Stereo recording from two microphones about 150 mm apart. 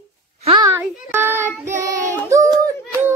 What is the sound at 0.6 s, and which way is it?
Child singing, 15° right (ahead or behind).